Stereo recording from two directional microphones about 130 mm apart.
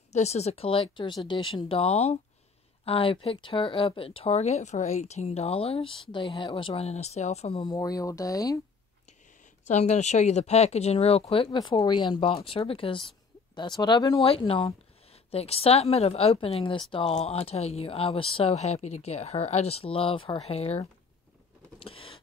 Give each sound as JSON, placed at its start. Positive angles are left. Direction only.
{"t": 0.1, "sound": "speech", "side_deg": 55}
{"t": 7.6, "sound": "speech", "side_deg": 30}
{"t": 9.7, "sound": "speech", "side_deg": 60}
{"t": 14.2, "sound": "speech", "side_deg": 45}
{"t": 21.7, "sound": "a sound", "side_deg": 45}